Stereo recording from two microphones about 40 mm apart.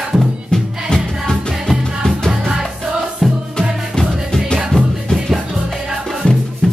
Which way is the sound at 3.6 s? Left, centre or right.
Centre.